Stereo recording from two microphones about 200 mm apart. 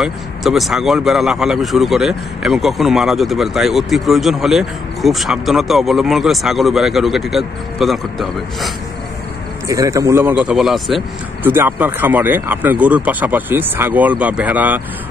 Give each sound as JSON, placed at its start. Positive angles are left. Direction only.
{"t": 0.0, "sound": "speech", "side_deg": 0}
{"t": 9.7, "sound": "speech", "side_deg": -15}
{"t": 10.4, "sound": "speech", "side_deg": 0}